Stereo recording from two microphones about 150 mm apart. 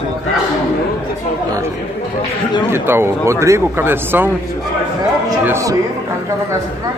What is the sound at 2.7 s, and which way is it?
Speech, 15° right (ahead or behind).